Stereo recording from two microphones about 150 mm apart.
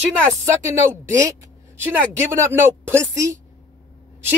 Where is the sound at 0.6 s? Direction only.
20° right (ahead or behind).